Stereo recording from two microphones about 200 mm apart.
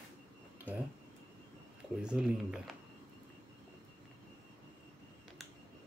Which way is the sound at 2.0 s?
5° right (ahead or behind).